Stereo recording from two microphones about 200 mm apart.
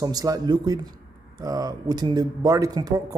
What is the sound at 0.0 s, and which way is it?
A man's voice, 20° right (ahead or behind).